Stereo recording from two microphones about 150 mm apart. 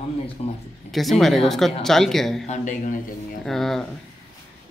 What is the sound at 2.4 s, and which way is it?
Speech, 55° left (ahead or behind).